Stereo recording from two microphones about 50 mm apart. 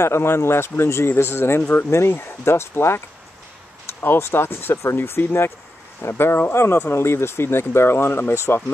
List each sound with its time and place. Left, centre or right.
0.0 s speech: left
4.0 s speech: left